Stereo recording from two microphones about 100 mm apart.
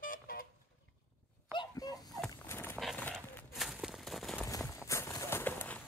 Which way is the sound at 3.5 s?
Centre (ahead or behind).